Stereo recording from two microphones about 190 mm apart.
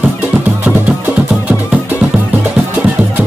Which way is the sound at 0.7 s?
5° right (ahead or behind).